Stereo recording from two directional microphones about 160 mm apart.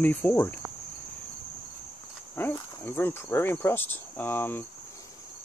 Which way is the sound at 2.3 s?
15° left (ahead or behind).